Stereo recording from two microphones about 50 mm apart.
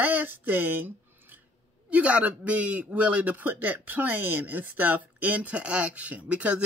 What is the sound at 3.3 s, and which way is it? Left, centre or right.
Speech, right.